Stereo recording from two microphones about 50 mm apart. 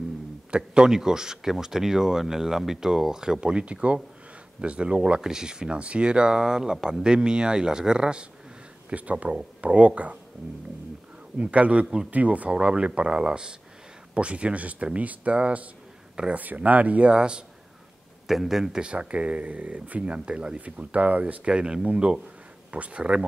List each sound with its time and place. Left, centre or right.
0.5 s speech: centre
8.9 s speech: right
11.3 s speech: right
18.2 s speech: centre
18.8 s speech: right